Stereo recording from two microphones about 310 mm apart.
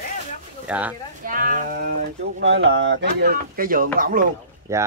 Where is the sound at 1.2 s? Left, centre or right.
Right.